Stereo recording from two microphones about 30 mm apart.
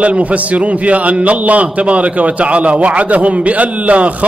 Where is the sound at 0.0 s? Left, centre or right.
Right.